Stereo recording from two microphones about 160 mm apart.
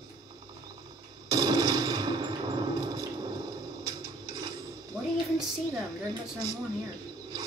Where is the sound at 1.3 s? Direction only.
25° right (ahead or behind).